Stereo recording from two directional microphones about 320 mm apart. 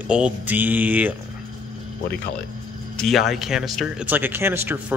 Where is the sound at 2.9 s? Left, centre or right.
Centre.